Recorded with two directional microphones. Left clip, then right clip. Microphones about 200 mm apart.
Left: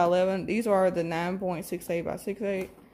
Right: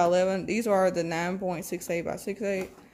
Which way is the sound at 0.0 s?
Centre (ahead or behind).